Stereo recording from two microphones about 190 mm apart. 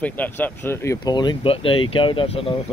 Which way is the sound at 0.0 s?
10° left (ahead or behind).